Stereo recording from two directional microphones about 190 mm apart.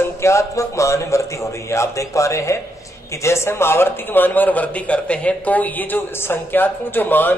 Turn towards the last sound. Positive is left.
turn(degrees=10)  # may be behind; listen again after turning